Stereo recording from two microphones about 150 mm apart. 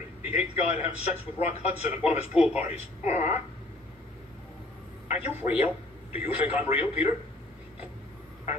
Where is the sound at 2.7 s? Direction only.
50° left (ahead or behind).